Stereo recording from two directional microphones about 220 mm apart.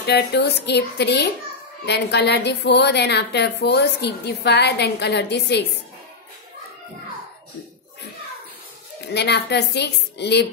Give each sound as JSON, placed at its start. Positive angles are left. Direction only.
{"t": 0.0, "sound": "a woman's voice", "side_deg": 50}
{"t": 9.0, "sound": "a woman's voice", "side_deg": 50}